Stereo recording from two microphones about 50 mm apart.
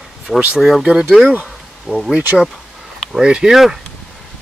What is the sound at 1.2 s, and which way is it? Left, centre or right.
Speech, right.